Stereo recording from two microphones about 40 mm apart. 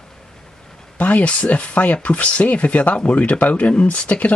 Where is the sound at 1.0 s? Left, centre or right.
Left.